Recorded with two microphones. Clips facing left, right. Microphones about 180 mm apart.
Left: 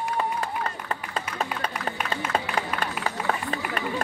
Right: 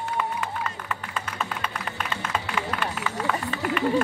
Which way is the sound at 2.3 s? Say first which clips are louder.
Left 4 dB; 40° left (ahead or behind).